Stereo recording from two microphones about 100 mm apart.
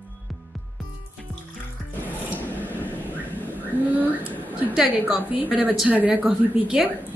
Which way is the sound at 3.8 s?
15° right (ahead or behind).